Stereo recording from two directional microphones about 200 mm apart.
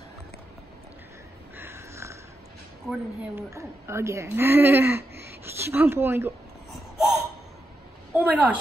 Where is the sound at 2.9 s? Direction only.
15° right (ahead or behind).